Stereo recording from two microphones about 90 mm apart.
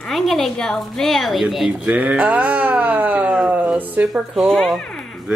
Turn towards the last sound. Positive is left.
turn(degrees=0)  # may be behind; listen again after turning